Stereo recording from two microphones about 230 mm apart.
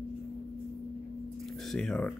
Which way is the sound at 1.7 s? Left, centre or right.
Centre.